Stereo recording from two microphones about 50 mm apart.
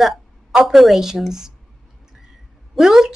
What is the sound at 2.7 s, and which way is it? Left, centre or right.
Speech, centre.